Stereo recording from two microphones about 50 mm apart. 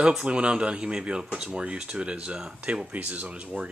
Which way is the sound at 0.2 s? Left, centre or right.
Right.